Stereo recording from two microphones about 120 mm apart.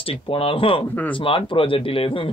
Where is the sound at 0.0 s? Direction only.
50° left (ahead or behind).